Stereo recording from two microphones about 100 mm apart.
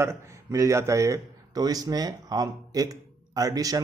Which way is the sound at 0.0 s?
30° right (ahead or behind).